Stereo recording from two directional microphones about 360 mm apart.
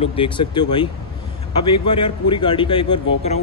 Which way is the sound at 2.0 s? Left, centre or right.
Centre.